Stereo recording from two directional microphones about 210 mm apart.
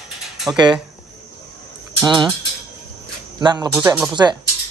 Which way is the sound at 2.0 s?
20° right (ahead or behind).